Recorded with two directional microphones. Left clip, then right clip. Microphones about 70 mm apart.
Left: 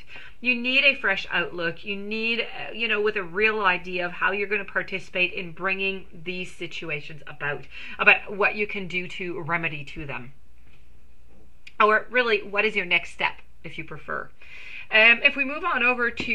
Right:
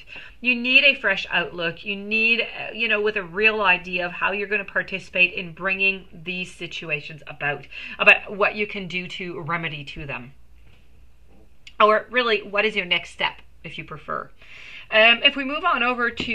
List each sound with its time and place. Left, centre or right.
0.1 s speech: left
11.6 s a sound: left
12.1 s speech: left
12.7 s speech: left; by 14.3 s centre
14.9 s speech: left